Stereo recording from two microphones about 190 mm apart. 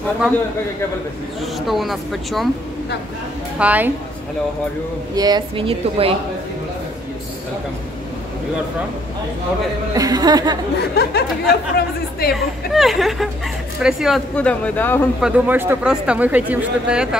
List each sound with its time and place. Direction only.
1.4 s speech: centre (ahead or behind)
3.5 s a woman's voice: 10° right (ahead or behind)
5.1 s a woman's voice: 20° right (ahead or behind)
9.9 s a woman's voice: 20° right (ahead or behind)
11.0 s speech: 55° left (ahead or behind)
12.7 s speech: centre (ahead or behind)
15.1 s speech: 5° right (ahead or behind)